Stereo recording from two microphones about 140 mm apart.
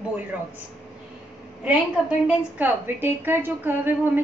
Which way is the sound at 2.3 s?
15° right (ahead or behind).